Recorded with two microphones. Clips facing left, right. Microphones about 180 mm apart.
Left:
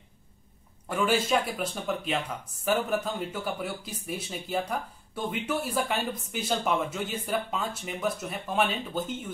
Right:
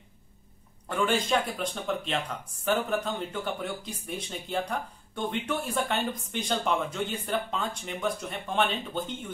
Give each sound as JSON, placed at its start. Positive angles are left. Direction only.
{"t": 0.8, "sound": "speech", "side_deg": 5}